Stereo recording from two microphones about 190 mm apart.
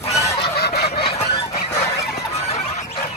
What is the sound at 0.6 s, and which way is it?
Fowl, 60° left (ahead or behind).